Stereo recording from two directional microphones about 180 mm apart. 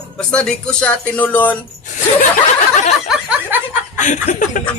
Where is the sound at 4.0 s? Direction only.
45° left (ahead or behind).